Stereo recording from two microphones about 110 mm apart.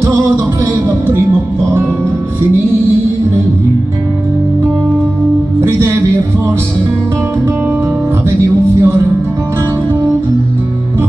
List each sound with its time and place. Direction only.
0.8 s music: 25° right (ahead or behind)
5.6 s music: 25° right (ahead or behind)
8.8 s music: 25° right (ahead or behind)